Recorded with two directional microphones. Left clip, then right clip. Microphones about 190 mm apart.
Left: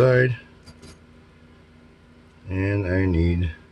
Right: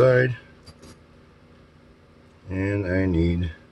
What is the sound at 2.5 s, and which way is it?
Speech, 10° left (ahead or behind).